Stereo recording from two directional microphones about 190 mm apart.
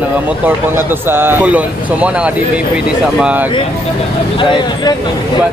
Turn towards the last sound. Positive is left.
turn(degrees=25)  # may be behind; listen again after turning